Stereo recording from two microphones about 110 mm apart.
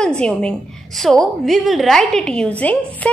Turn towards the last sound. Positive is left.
turn(degrees=10)  # may be behind; listen again after turning